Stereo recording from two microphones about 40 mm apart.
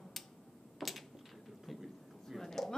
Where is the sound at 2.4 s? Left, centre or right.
Centre.